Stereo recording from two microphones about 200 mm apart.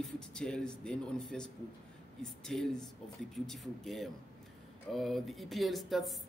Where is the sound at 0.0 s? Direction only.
5° left (ahead or behind).